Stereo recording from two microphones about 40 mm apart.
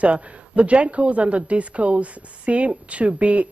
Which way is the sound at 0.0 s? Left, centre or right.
Right.